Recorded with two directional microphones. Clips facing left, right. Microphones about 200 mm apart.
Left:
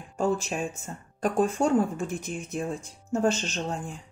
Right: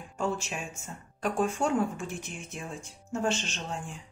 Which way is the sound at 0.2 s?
35° left (ahead or behind).